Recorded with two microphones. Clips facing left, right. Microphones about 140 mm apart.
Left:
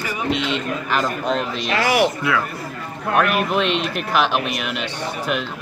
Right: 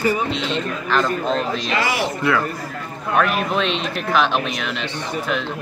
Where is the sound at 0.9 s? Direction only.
10° left (ahead or behind).